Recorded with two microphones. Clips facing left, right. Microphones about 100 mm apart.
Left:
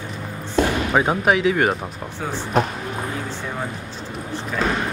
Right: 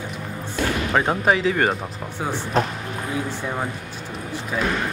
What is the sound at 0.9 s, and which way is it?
Speech, 5° left (ahead or behind).